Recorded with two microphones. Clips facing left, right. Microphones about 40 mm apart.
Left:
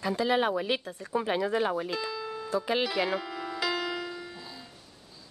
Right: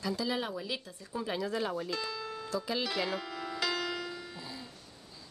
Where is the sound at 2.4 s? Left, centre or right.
Left.